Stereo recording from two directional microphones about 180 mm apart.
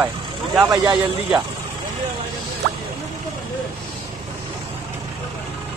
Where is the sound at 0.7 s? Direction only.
20° right (ahead or behind).